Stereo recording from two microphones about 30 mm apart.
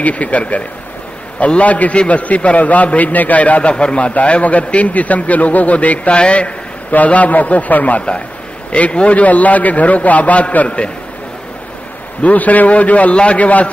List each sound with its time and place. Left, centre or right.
0.0 s a man's voice: left
3.7 s a man's voice: left
4.1 s a man's voice: left
6.1 s a man's voice: left
6.9 s a man's voice: left
8.7 s a man's voice: left
9.1 s a man's voice: left
12.2 s a man's voice: left
13.1 s a man's voice: left
13.4 s a man's voice: left